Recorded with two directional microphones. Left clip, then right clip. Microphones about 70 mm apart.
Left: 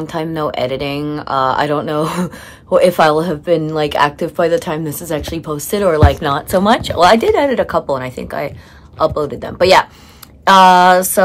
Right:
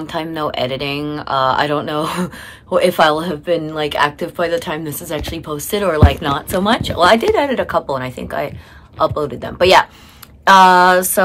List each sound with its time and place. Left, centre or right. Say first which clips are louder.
0.0 s speech: left 2 dB; left